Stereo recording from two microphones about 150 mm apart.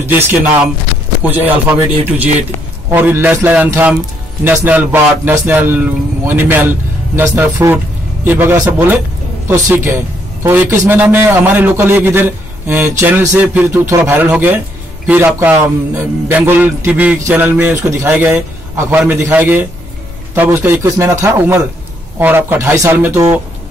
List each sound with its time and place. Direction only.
0.0 s a man's voice: 15° right (ahead or behind)
2.9 s a man's voice: 15° right (ahead or behind)